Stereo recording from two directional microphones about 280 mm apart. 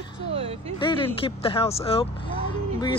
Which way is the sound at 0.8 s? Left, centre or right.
Centre.